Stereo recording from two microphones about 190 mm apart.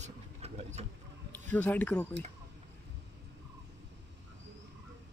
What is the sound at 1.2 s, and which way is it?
Speech, 10° left (ahead or behind).